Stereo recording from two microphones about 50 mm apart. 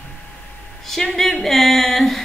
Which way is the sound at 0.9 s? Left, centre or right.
Centre.